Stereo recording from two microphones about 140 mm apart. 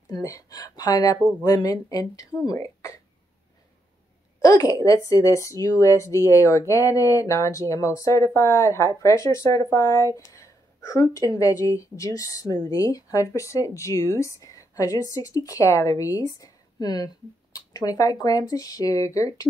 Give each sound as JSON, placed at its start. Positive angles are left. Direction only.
{"t": 0.1, "sound": "speech", "side_deg": 25}
{"t": 4.4, "sound": "speech", "side_deg": 25}